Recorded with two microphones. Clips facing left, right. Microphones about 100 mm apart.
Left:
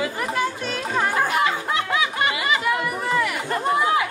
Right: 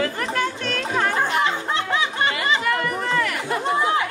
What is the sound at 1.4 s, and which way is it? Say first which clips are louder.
Music: even; 30° right (ahead or behind).